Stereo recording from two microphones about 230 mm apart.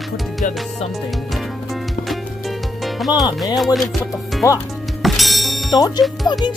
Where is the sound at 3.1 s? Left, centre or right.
Centre.